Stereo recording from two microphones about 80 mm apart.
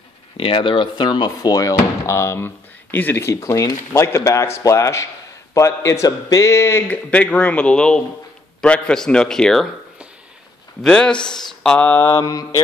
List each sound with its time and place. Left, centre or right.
0.5 s a man's voice: left
6.0 s a man's voice: left
6.9 s speech: centre
10.8 s speech: centre
11.8 s mantra: left
12.1 s speech: left